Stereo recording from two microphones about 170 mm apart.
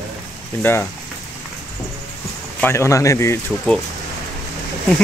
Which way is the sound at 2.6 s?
15° left (ahead or behind).